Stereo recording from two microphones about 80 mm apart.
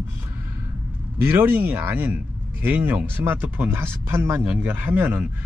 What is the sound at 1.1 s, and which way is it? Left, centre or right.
Speech, right.